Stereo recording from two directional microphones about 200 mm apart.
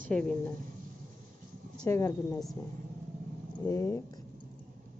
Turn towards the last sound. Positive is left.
turn(degrees=15)  # may be behind; listen again after turning